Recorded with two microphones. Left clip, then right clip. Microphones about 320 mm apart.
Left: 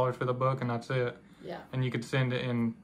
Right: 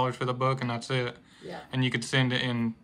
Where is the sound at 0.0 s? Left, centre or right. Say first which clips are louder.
Right 1 dB; centre.